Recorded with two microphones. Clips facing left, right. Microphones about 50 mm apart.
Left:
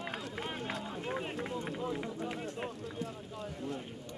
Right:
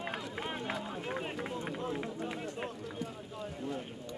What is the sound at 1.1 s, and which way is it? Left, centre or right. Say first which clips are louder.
Run: left 1 dB; centre.